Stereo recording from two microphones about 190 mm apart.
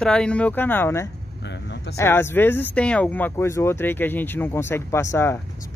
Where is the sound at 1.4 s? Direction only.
65° left (ahead or behind).